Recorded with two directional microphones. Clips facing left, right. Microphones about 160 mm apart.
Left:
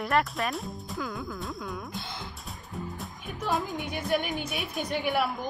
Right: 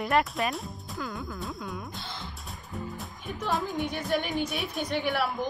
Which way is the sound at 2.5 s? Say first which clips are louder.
Right 1 dB; centre (ahead or behind).